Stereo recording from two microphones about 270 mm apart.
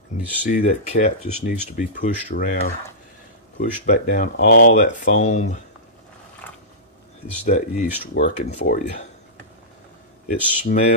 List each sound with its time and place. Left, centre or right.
0.1 s speech: left
6.4 s mechanisms: centre
7.4 s speech: left
10.2 s speech: left